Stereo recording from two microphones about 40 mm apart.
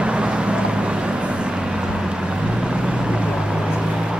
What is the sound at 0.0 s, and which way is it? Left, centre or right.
Vehicle, right.